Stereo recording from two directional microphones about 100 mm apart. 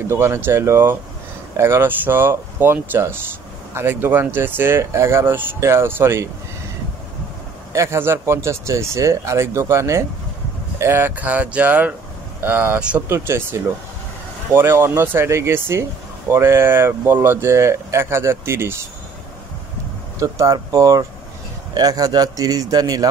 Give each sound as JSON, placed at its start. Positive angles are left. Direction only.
{"t": 0.1, "sound": "speech", "side_deg": -25}
{"t": 7.7, "sound": "speech", "side_deg": -30}
{"t": 13.1, "sound": "speech", "side_deg": -25}
{"t": 20.2, "sound": "a man's voice", "side_deg": -35}